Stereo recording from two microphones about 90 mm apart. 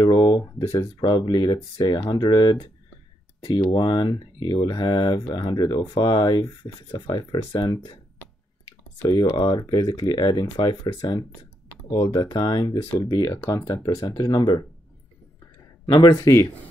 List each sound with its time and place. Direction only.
0.0 s speech: 50° left (ahead or behind)
9.0 s speech: 50° left (ahead or behind)
13.3 s speech: 40° left (ahead or behind)
15.8 s speech: 55° left (ahead or behind)